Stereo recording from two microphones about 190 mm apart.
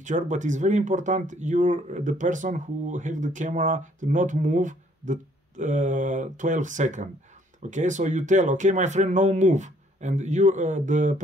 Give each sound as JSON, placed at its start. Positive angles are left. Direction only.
{"t": 0.0, "sound": "speech", "side_deg": -40}